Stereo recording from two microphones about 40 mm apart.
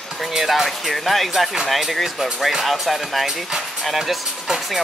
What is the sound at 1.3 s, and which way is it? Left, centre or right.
Speech, centre.